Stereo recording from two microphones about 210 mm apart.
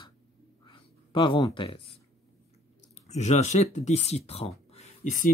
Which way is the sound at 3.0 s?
30° left (ahead or behind).